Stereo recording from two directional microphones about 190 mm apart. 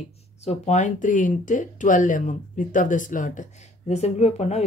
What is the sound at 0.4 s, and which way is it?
Speech, 35° left (ahead or behind).